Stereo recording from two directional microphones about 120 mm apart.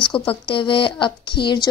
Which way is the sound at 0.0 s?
5° left (ahead or behind).